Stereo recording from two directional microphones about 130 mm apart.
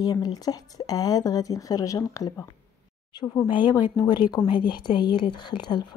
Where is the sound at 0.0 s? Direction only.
30° left (ahead or behind).